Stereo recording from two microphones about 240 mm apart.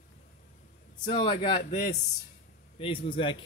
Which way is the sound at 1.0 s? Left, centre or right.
Left.